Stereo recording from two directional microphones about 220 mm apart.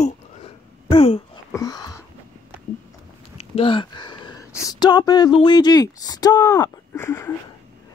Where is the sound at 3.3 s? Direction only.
25° left (ahead or behind).